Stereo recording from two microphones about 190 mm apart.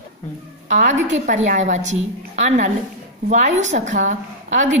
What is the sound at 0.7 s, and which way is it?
A woman's voice, 40° right (ahead or behind).